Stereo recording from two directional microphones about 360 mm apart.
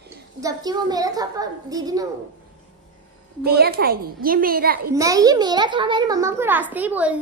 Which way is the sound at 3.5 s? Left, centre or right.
Right.